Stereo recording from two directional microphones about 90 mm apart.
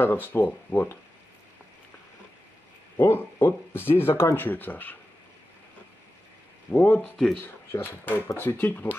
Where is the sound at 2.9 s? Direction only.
25° left (ahead or behind).